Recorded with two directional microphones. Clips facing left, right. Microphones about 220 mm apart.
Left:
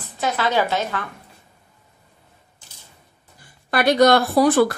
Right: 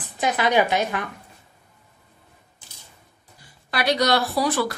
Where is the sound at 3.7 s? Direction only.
50° left (ahead or behind).